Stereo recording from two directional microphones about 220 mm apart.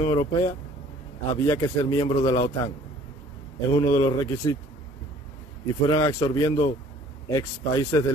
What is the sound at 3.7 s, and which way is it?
Speech, 20° left (ahead or behind).